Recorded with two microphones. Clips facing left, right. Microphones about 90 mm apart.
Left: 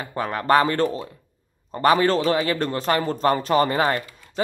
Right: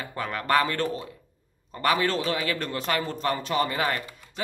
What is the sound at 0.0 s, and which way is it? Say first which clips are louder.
A man's voice: left 5 dB; 30° left (ahead or behind).